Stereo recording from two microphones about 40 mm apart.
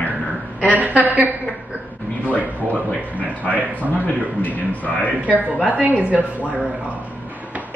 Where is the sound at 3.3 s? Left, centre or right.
Left.